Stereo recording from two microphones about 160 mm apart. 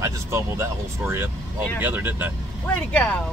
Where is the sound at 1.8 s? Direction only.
10° right (ahead or behind).